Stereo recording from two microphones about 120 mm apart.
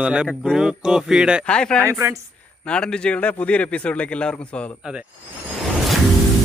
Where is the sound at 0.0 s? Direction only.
10° right (ahead or behind).